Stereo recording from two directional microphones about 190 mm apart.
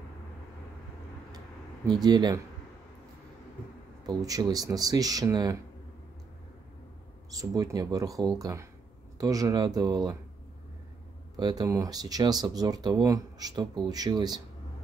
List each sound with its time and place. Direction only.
1.9 s speech: 20° right (ahead or behind)
4.0 s speech: 20° right (ahead or behind)
7.3 s speech: 15° right (ahead or behind)
11.3 s speech: 20° right (ahead or behind)